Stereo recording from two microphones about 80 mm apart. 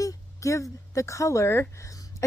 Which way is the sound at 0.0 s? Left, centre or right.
Left.